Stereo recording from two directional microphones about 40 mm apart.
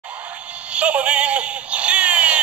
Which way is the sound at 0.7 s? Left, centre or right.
Right.